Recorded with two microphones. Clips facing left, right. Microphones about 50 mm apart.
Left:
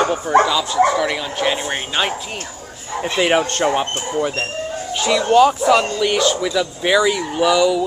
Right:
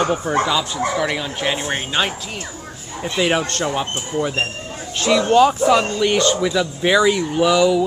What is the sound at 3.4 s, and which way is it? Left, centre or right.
Speech, left.